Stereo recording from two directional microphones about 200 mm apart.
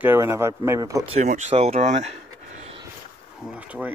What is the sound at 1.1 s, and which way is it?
Speech, 35° right (ahead or behind).